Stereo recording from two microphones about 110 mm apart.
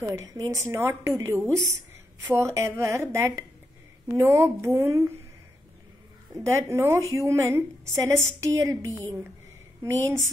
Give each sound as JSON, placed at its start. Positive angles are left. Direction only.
{"t": 0.0, "sound": "a woman's voice", "side_deg": -30}
{"t": 6.3, "sound": "a woman's voice", "side_deg": -25}
{"t": 9.9, "sound": "a woman's voice", "side_deg": -30}